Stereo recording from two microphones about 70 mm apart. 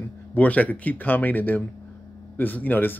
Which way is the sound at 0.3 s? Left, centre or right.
Left.